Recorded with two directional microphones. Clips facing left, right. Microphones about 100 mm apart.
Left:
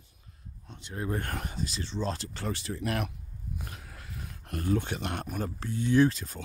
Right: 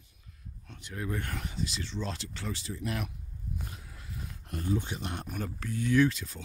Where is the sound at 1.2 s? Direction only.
45° left (ahead or behind).